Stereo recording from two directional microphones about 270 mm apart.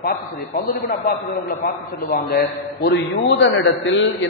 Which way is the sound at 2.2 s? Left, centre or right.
Left.